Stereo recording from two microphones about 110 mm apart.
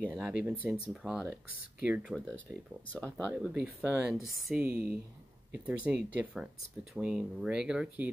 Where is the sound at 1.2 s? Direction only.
15° right (ahead or behind).